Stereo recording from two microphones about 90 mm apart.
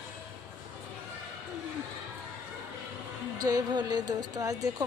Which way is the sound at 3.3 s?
45° right (ahead or behind).